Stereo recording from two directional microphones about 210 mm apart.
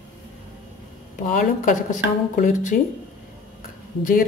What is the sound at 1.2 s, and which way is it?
Speech, 40° left (ahead or behind).